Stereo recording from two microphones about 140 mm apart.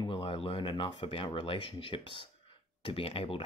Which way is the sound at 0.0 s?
40° left (ahead or behind).